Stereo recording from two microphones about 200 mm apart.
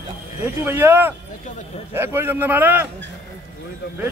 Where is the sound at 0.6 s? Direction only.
10° right (ahead or behind).